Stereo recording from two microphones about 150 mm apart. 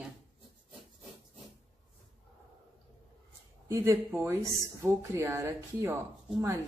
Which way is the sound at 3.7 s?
15° right (ahead or behind).